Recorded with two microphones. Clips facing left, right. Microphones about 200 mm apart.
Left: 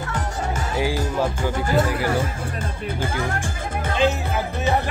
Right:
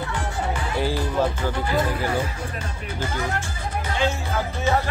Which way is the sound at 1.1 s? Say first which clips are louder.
Even; 10° left (ahead or behind).